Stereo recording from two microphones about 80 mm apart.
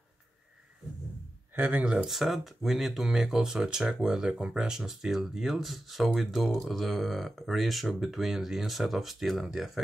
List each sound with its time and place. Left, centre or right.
1.5 s speech: right
2.0 s speech: centre